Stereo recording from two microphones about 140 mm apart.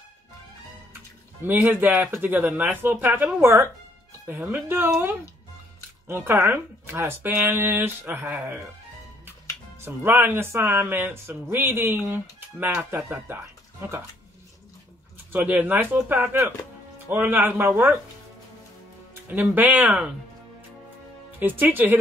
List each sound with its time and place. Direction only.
1.4 s speech: 15° right (ahead or behind)
9.8 s speech: 15° right (ahead or behind)
15.3 s speech: 10° right (ahead or behind)
19.3 s speech: 15° right (ahead or behind)
21.4 s speech: 15° right (ahead or behind)